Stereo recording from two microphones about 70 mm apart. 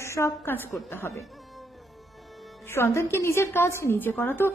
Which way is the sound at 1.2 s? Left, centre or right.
Centre.